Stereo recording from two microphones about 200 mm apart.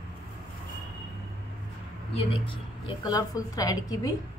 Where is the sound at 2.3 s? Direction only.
25° left (ahead or behind).